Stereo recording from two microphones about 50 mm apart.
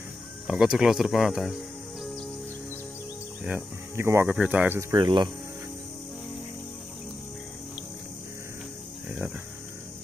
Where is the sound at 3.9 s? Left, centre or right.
Right.